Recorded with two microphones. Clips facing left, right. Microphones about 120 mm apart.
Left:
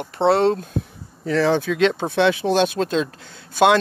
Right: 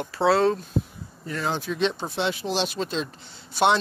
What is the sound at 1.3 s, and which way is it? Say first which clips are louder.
Speech: left 9 dB; 90° left.